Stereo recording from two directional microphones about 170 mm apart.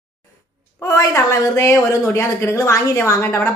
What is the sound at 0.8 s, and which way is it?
Speech, 20° left (ahead or behind).